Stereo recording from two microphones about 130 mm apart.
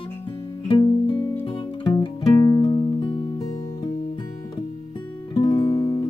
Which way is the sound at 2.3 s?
25° left (ahead or behind).